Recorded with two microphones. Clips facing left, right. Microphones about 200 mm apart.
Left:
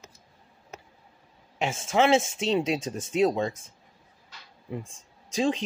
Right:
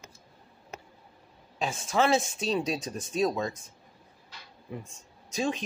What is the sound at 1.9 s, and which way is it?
Speech, 25° left (ahead or behind).